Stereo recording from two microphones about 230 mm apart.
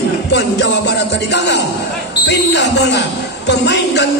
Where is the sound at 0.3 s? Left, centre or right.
Left.